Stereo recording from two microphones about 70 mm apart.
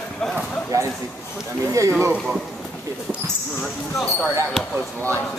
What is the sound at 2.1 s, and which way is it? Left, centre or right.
Speech, centre.